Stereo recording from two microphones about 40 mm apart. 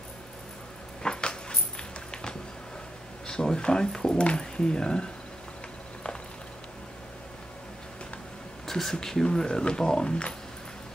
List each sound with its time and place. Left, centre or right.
1.0 s dog: left
3.3 s speech: centre
8.6 s a sound: centre
9.0 s speech: centre